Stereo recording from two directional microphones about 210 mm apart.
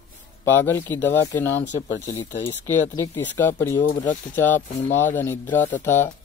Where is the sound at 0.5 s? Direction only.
10° left (ahead or behind).